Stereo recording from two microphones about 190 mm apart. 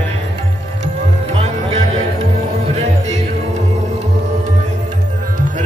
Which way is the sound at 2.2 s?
35° right (ahead or behind).